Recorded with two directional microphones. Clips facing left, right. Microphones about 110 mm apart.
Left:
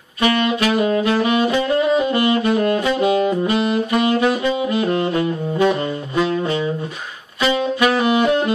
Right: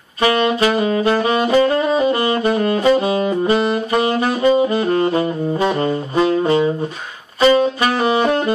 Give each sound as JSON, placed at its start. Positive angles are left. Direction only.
{"t": 0.2, "sound": "saxophone", "side_deg": -30}